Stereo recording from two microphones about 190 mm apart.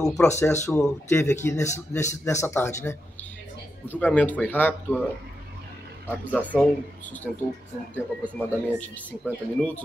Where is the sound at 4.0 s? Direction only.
5° left (ahead or behind).